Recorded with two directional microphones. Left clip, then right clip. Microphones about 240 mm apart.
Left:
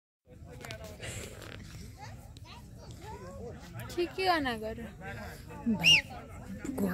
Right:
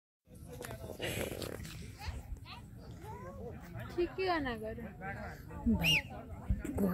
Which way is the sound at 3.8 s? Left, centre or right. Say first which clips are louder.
Left 5 dB; left.